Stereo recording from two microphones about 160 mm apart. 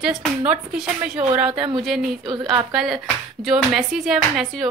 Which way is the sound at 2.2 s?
30° right (ahead or behind).